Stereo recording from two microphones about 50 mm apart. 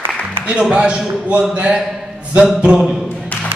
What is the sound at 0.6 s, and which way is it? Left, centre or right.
A man's voice, centre.